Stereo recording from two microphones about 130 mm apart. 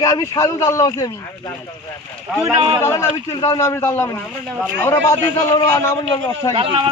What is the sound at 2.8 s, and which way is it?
A man's voice, 20° left (ahead or behind).